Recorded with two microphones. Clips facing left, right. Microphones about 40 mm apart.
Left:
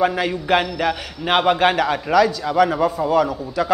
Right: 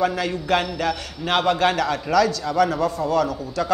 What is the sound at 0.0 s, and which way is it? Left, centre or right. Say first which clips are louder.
A man's voice: left 3 dB; centre.